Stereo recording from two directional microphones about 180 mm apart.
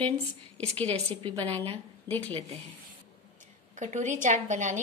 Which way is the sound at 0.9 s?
30° right (ahead or behind).